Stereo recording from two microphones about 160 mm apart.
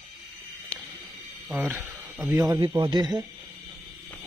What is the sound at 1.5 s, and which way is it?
Speech, 10° right (ahead or behind).